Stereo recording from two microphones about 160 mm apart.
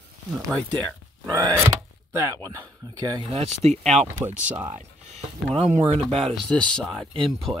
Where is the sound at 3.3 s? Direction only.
45° right (ahead or behind).